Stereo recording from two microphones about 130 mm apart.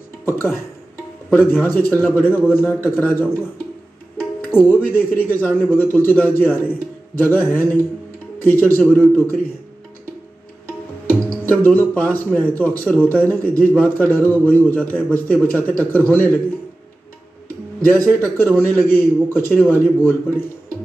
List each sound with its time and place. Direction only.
0.2 s speech: 15° left (ahead or behind)
11.1 s speech: 10° left (ahead or behind)
18.2 s speech: 10° left (ahead or behind)